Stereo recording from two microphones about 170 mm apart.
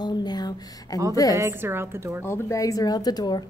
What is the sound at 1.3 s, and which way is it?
Speech, 15° right (ahead or behind).